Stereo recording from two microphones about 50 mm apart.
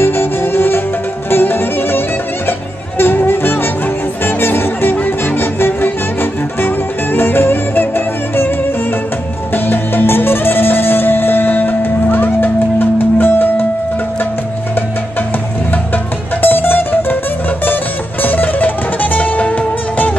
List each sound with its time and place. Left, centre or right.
0.0 s music: left
9.5 s music: left
16.3 s music: left
18.2 s music: left